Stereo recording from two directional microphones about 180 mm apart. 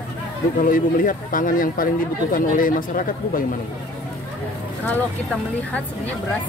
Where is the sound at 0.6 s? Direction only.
50° left (ahead or behind).